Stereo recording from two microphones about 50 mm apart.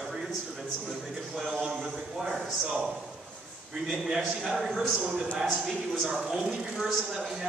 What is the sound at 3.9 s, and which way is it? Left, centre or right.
Speech, centre.